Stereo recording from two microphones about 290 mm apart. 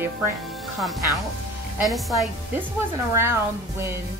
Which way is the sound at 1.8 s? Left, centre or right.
Centre.